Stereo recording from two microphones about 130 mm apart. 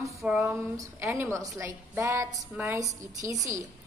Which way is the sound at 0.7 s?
20° right (ahead or behind).